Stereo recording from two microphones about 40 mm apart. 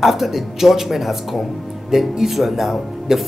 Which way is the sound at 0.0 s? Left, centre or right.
Centre.